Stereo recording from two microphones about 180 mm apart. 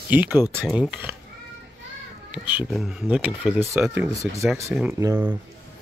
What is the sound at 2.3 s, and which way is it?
Speech, centre (ahead or behind).